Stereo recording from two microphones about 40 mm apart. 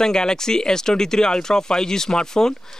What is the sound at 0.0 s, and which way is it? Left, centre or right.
Speech, centre.